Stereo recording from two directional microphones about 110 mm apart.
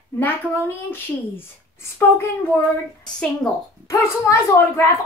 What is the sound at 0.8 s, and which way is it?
A woman's voice, 20° left (ahead or behind).